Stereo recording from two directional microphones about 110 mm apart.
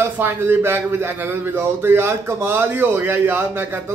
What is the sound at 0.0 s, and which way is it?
A man's voice, 20° right (ahead or behind).